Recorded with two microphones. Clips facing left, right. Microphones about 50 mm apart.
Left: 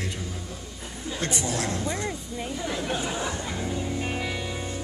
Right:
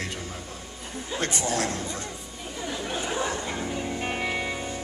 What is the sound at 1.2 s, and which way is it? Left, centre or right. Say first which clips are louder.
Speech: right 1 dB; right.